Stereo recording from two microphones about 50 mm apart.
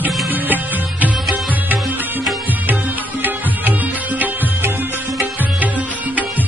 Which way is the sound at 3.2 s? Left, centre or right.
Right.